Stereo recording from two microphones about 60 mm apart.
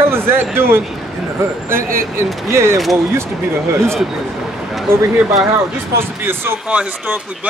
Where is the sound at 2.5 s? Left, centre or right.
Right.